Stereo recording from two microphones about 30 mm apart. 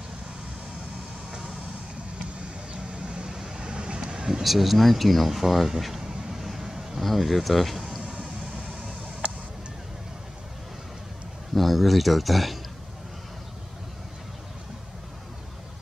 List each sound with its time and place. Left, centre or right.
2.7 s vehicle: right
3.3 s vehicle: centre
3.6 s vehicle: right
4.4 s speech: centre
6.3 s vehicle: centre
7.0 s speech: centre
11.5 s speech: centre